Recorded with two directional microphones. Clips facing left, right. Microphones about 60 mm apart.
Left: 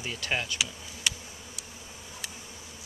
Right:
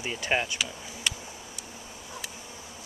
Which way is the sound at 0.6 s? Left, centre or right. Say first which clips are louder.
Even; centre.